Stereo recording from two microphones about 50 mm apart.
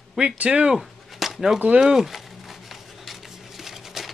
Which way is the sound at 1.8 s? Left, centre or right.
Centre.